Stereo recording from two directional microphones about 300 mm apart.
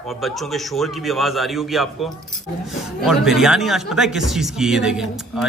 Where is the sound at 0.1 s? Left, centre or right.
Centre.